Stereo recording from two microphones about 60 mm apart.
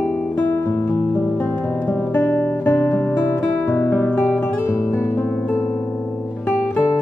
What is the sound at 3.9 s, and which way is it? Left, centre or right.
Guitar, left.